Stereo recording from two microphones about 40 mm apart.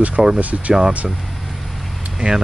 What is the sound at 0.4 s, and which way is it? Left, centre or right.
Speech, right.